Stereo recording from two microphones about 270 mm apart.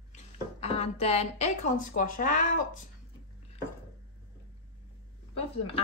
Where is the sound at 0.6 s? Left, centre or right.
Left.